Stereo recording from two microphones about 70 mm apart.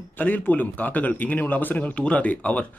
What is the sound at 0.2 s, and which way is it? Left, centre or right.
Speech, left.